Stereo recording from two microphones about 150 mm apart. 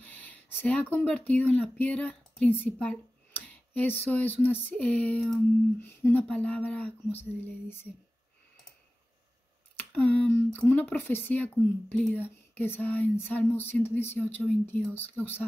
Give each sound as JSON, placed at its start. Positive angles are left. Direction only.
{"t": 0.0, "sound": "speech", "side_deg": 10}
{"t": 9.8, "sound": "speech", "side_deg": 10}